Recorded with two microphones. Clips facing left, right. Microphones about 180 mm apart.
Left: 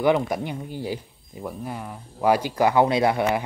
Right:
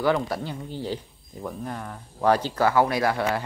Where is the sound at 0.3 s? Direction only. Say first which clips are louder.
Left 2 dB; 15° left (ahead or behind).